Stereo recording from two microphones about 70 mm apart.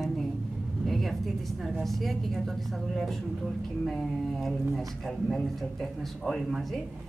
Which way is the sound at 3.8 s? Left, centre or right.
Centre.